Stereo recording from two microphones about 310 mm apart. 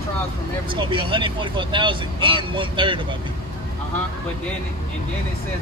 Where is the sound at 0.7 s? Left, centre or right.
Centre.